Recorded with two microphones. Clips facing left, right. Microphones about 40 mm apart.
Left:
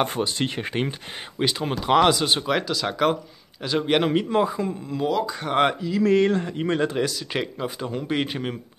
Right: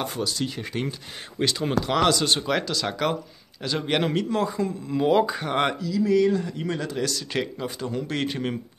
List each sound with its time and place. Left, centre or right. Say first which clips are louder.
0.0 s speech: left 4 dB; left
1.4 s speech: right 1 dB; centre
4.1 s speech: left 3 dB; left
5.9 s a sound: left 1 dB; left
6.4 s speech: left 5 dB; left
7.1 s speech: even; centre